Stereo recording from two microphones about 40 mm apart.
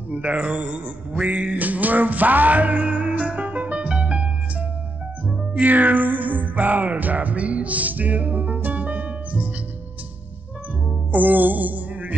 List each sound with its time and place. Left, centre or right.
0.1 s music: right
3.7 s music: right
5.2 s music: right
11.1 s music: right